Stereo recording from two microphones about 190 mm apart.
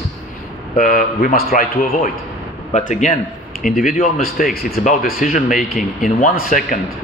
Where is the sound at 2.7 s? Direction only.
40° left (ahead or behind).